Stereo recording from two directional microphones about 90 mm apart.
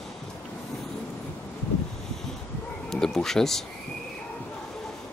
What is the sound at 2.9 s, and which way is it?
Speech, 5° left (ahead or behind).